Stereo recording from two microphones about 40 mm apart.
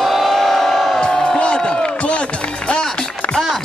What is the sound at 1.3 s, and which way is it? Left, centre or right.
Music, left.